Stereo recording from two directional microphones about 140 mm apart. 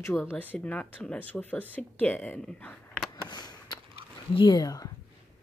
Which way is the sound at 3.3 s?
30° left (ahead or behind).